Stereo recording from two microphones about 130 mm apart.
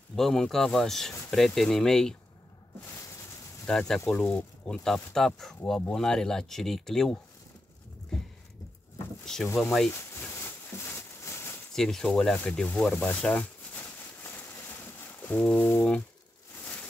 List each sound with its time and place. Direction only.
0.1 s speech: 5° left (ahead or behind)
3.6 s speech: 5° left (ahead or behind)
9.2 s a sound: 5° left (ahead or behind)
9.6 s speech: 5° left (ahead or behind)
9.9 s a sound: 20° left (ahead or behind)
11.7 s speech: 5° left (ahead or behind)
15.2 s brass instrument: 10° left (ahead or behind)